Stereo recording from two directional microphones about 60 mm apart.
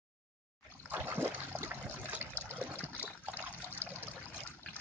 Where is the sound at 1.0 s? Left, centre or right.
Right.